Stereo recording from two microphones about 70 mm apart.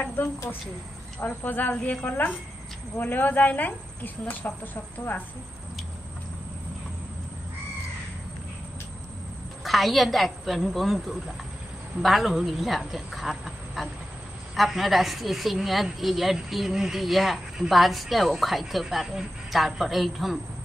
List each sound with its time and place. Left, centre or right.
1.2 s speech: left
9.6 s a woman's voice: centre